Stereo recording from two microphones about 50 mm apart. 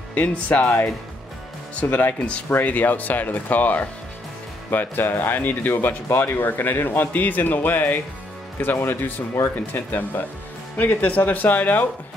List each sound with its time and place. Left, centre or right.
0.1 s speech: left
1.8 s speech: left
2.1 s speech: left
2.6 s speech: left
8.7 s speech: left
9.8 s speech: left